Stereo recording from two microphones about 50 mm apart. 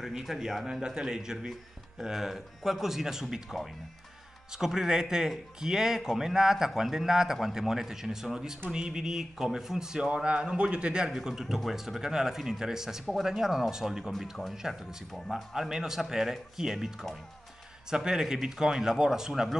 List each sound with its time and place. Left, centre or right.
0.1 s a man's voice: centre
4.6 s a man's voice: centre
11.1 s a man's voice: centre